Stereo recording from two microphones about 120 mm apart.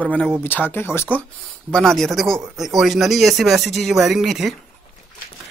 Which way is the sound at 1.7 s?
5° left (ahead or behind).